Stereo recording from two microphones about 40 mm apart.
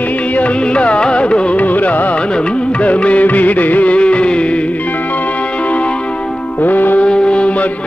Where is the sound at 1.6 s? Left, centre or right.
Left.